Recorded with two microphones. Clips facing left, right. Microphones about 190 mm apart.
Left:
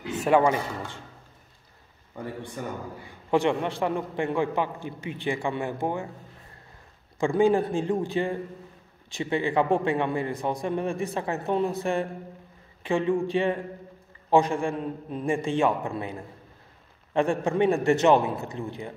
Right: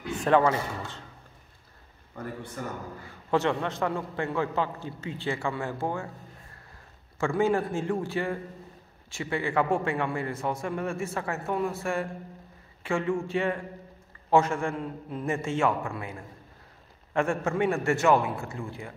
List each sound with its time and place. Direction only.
0.2 s a man's voice: 10° left (ahead or behind)
2.1 s a man's voice: 15° left (ahead or behind)
7.2 s a man's voice: 15° left (ahead or behind)